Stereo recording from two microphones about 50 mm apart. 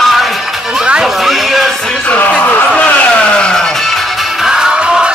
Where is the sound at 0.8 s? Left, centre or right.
Centre.